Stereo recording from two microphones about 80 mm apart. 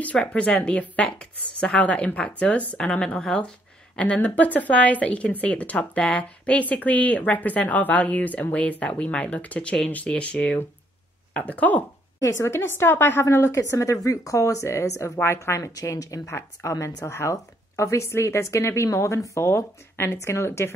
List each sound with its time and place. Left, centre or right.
0.0 s a woman's voice: centre
12.2 s a woman's voice: left